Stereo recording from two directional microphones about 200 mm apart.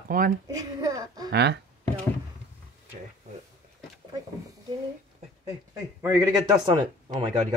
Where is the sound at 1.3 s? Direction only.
55° right (ahead or behind).